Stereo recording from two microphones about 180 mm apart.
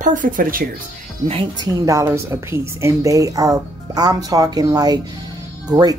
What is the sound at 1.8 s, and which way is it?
A woman's voice, 15° right (ahead or behind).